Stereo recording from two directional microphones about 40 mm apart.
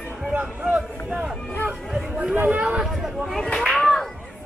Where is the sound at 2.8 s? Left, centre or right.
Centre.